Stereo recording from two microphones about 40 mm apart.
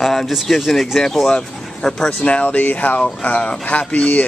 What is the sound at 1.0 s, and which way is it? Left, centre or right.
Speech, centre.